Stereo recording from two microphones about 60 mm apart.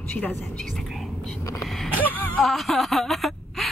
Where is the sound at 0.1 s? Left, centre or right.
Left.